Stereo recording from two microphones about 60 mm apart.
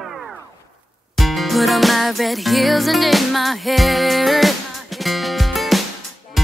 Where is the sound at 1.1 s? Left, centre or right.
Centre.